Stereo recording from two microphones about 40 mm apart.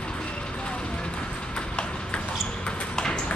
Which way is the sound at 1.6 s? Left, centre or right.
Left.